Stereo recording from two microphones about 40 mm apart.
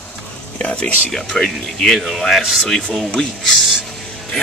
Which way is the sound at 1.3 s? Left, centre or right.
Centre.